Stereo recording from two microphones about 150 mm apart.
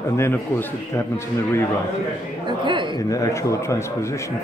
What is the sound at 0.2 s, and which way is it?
A man's voice, 15° left (ahead or behind).